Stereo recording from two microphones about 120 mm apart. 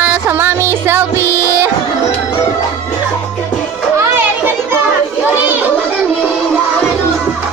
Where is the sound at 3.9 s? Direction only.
20° right (ahead or behind).